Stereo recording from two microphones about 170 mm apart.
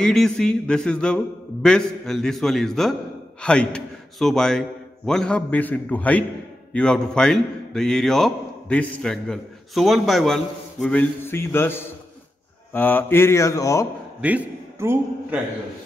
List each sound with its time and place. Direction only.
0.0 s a man's voice: 5° left (ahead or behind)
12.7 s mantra: 10° left (ahead or behind)
14.2 s a man's voice: 10° right (ahead or behind)